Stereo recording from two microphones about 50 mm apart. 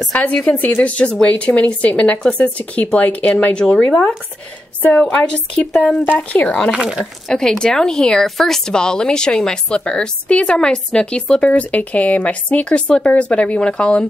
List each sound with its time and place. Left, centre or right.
0.1 s speech: left
5.1 s speech: left
6.7 s speech: centre
7.2 s a woman's voice: centre